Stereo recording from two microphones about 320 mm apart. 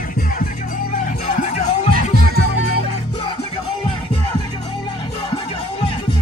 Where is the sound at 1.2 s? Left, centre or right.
Left.